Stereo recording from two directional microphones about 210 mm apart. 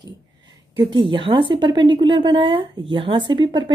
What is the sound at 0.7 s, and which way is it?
A woman's voice, 20° right (ahead or behind).